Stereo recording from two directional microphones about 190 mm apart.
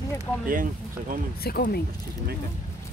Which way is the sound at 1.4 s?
55° left (ahead or behind).